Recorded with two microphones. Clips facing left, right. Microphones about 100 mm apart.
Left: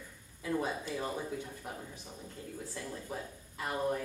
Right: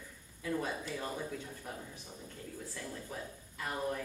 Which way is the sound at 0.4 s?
20° left (ahead or behind).